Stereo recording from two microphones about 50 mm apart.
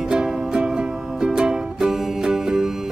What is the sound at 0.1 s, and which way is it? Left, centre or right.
Music, centre.